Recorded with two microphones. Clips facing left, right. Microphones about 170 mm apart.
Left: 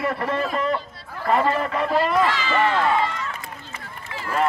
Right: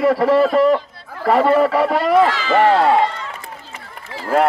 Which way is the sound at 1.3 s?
75° right (ahead or behind).